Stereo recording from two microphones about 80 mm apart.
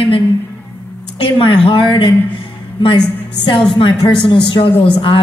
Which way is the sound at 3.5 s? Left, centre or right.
Left.